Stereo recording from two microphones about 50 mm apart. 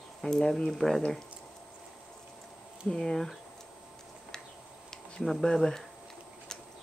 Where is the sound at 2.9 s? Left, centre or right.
Centre.